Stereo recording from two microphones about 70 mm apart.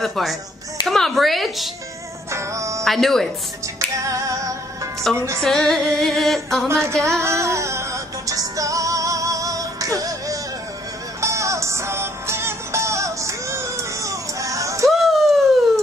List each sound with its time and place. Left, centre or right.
0.0 s music: centre
2.3 s music: right
2.8 s music: centre
4.0 s female singing: right
5.1 s music: centre
6.7 s music: right
14.9 s a sound: centre